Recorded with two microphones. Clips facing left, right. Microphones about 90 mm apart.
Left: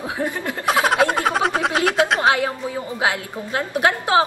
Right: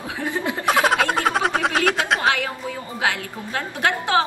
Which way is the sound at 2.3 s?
25° left (ahead or behind).